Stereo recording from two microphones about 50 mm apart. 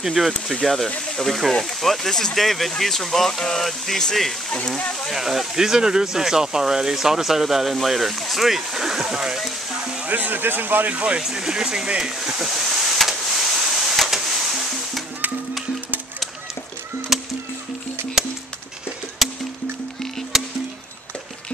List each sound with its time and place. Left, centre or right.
0.0 s speech: centre
0.5 s speech: centre
4.5 s speech: centre
5.1 s speech: centre
10.0 s speech: right
11.0 s speech: right
11.2 s a sound: centre
17.1 s music: centre
19.2 s music: centre